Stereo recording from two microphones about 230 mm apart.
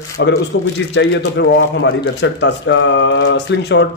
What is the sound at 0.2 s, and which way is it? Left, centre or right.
Speech, left.